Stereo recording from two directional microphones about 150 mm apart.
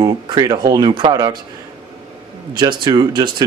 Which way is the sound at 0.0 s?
30° right (ahead or behind).